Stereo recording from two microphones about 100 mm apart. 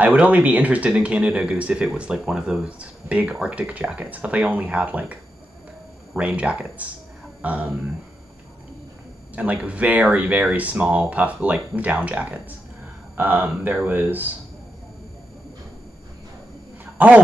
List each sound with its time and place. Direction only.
0.0 s speech: 15° right (ahead or behind)
9.3 s speech: 15° right (ahead or behind)
17.0 s speech: 15° right (ahead or behind)